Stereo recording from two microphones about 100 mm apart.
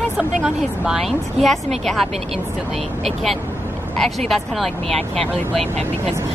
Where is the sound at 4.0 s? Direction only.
5° left (ahead or behind).